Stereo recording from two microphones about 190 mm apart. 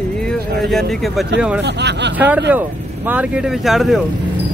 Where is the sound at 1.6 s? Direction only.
65° right (ahead or behind).